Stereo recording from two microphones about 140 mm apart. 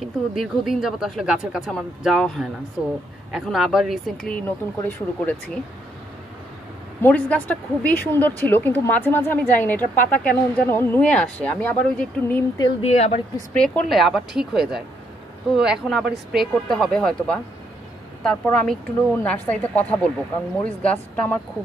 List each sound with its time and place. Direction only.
0.0 s a woman's voice: centre (ahead or behind)
4.5 s speech: 10° left (ahead or behind)
7.0 s speech: 10° left (ahead or behind)
12.8 s speech: 50° left (ahead or behind)
13.5 s a woman's voice: 5° left (ahead or behind)